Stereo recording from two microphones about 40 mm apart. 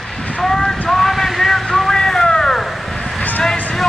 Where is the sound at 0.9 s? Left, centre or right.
Centre.